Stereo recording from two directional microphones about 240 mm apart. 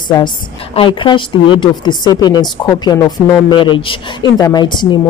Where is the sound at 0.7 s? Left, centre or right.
Centre.